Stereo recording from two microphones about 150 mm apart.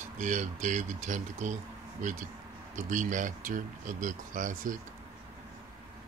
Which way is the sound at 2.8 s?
60° right (ahead or behind).